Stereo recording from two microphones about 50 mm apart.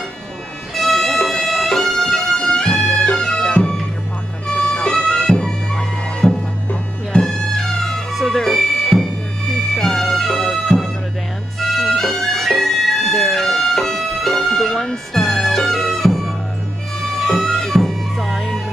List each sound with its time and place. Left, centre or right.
0.7 s violin: centre
4.5 s bagpipes: centre
7.1 s music: centre